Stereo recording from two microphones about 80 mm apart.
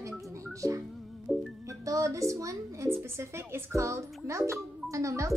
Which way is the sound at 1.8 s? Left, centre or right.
Right.